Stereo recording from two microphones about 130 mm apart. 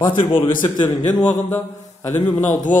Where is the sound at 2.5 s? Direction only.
75° left (ahead or behind).